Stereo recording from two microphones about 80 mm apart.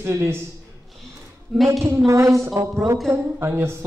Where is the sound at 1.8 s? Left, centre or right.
Right.